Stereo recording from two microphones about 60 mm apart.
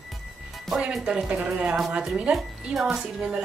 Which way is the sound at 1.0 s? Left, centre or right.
Centre.